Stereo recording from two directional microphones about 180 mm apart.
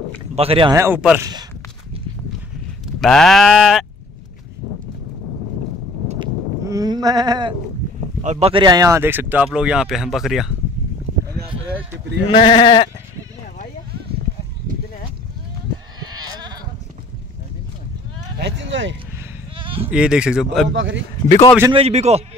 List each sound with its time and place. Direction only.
0.4 s a man's voice: 30° right (ahead or behind)
0.7 s speech: 10° right (ahead or behind)
3.0 s speech: centre (ahead or behind)
6.1 s sheep: 20° right (ahead or behind)
8.2 s speech: 35° right (ahead or behind)
8.6 s speech: 20° right (ahead or behind); by 10.5 s centre (ahead or behind)
12.3 s speech: 25° left (ahead or behind)
18.4 s speech: 90° right
19.9 s speech: 5° right (ahead or behind)
20.6 s speech: 90° right
21.7 s a man's voice: 35° right (ahead or behind)